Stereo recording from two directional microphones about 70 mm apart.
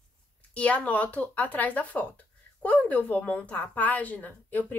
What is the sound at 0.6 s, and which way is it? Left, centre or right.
Speech, centre.